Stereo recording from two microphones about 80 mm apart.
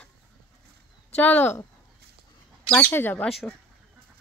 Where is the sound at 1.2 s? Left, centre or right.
Left.